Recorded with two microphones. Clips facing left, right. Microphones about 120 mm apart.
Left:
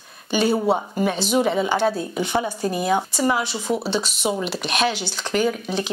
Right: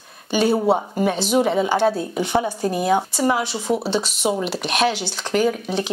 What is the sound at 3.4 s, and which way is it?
Speech, 60° right (ahead or behind).